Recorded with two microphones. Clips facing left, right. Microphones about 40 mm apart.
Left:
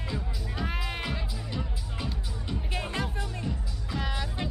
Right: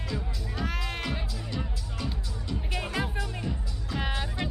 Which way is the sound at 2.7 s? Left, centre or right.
Centre.